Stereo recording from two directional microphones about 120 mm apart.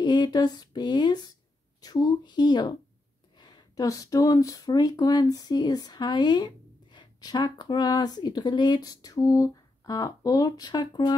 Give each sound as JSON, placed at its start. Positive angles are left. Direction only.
{"t": 0.0, "sound": "speech", "side_deg": 40}